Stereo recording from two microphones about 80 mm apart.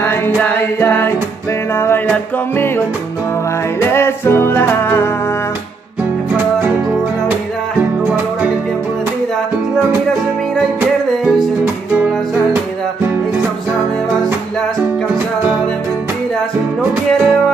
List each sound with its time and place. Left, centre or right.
0.4 s music: left
3.8 s music: left
8.1 s music: centre